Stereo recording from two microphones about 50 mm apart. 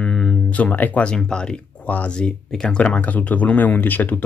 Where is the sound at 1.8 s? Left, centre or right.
Left.